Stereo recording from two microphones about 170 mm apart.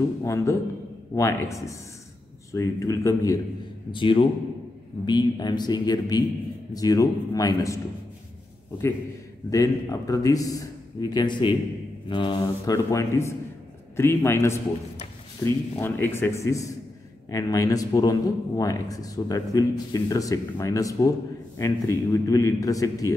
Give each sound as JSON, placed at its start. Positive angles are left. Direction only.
{"t": 0.2, "sound": "speech", "side_deg": 20}
{"t": 3.9, "sound": "speech", "side_deg": 30}
{"t": 9.5, "sound": "speech", "side_deg": 20}